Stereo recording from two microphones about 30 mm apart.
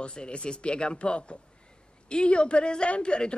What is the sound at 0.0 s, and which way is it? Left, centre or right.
Speech, left.